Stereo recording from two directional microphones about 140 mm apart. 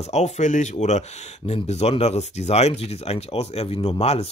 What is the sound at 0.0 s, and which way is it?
Speech, 55° left (ahead or behind).